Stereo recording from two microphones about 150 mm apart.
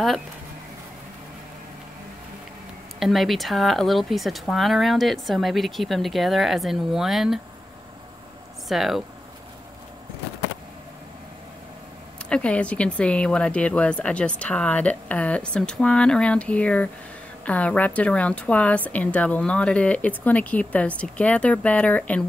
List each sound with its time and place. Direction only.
3.0 s speech: centre (ahead or behind)
8.6 s speech: centre (ahead or behind)
12.3 s speech: 5° left (ahead or behind)